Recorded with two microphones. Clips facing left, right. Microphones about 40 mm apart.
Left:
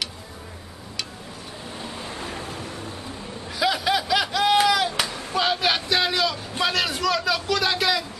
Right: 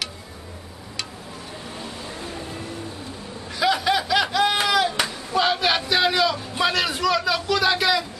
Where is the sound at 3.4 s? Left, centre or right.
Centre.